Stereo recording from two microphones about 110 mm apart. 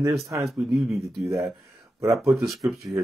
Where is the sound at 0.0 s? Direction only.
30° right (ahead or behind).